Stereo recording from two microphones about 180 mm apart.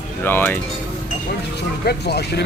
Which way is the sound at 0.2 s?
10° left (ahead or behind).